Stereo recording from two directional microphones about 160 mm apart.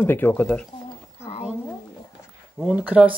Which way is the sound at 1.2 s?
40° left (ahead or behind).